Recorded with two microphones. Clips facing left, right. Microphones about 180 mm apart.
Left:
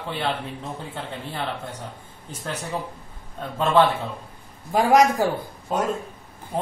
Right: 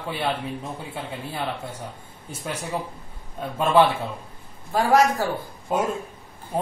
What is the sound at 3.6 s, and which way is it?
Speech, 10° right (ahead or behind).